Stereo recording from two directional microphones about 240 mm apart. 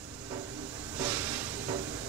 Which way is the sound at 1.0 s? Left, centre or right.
Centre.